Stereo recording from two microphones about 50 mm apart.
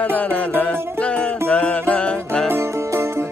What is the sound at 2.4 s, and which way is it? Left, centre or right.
Music, right.